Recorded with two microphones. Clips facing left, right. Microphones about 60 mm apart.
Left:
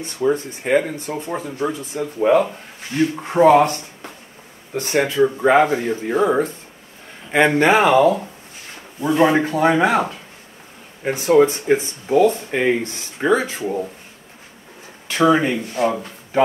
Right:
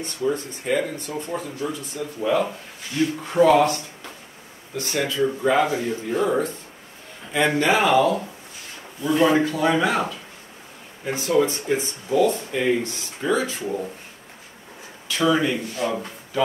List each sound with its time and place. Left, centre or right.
0.2 s speech: left
0.7 s speech: left
12.4 s speech: left
12.8 s speech: left
15.0 s speech: left